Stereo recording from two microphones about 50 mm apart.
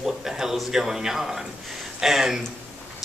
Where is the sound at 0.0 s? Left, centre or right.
Centre.